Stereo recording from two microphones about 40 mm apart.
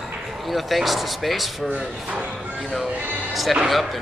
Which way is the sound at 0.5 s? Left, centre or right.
Centre.